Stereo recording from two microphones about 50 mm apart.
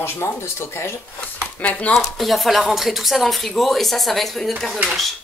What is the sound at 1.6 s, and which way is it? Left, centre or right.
Speech, left.